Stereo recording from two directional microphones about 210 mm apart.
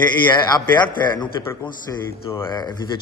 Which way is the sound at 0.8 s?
10° left (ahead or behind).